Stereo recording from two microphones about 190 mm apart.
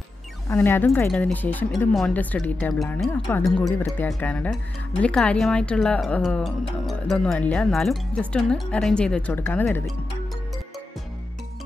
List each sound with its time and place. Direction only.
0.5 s speech: 10° left (ahead or behind)